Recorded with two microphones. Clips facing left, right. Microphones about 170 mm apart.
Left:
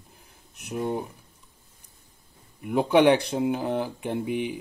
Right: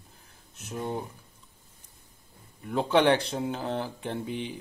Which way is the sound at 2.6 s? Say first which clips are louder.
Left 4 dB; 15° left (ahead or behind).